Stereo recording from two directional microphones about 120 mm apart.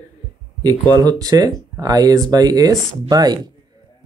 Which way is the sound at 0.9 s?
30° right (ahead or behind).